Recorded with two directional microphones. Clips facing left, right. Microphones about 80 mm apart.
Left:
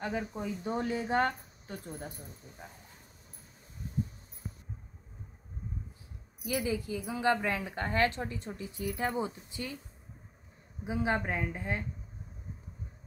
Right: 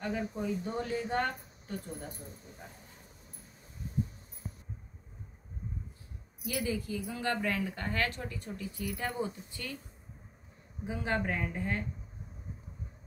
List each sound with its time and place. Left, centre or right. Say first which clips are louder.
0.0 s a woman's voice: even; left
6.4 s a woman's voice: left 2 dB; centre
10.8 s speech: left 2 dB; centre